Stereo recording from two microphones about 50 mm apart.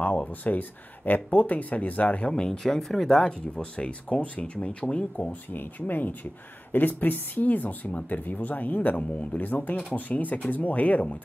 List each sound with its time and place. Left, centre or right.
0.3 s speech: left
2.6 s speech: centre
5.5 s speech: left